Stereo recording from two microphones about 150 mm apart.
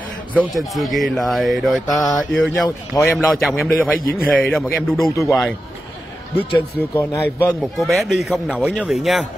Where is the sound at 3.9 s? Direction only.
80° left.